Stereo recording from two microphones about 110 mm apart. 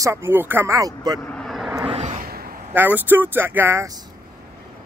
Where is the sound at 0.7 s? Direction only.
35° right (ahead or behind).